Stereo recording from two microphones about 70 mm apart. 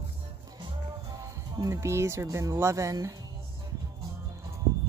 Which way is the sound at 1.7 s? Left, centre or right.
Right.